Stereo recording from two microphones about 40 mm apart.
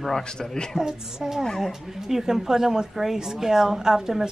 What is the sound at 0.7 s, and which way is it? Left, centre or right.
A woman's voice, centre.